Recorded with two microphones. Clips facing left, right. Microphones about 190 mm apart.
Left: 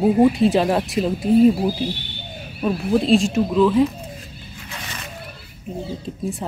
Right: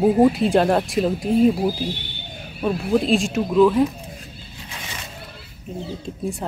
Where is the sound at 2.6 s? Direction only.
Centre (ahead or behind).